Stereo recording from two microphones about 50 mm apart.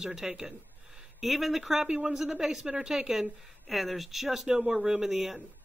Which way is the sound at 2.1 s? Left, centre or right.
Centre.